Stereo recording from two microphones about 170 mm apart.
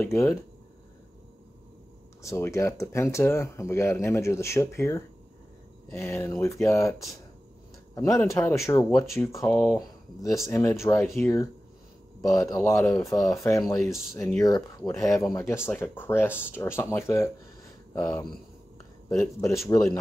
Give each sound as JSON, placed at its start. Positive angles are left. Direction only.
{"t": 0.0, "sound": "speech", "side_deg": 15}
{"t": 2.2, "sound": "speech", "side_deg": 15}
{"t": 19.0, "sound": "speech", "side_deg": 15}